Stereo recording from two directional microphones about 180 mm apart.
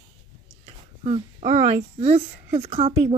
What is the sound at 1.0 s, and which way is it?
A woman's voice, 35° right (ahead or behind).